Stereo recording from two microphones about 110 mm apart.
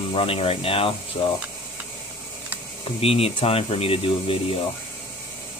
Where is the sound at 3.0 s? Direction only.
60° left (ahead or behind).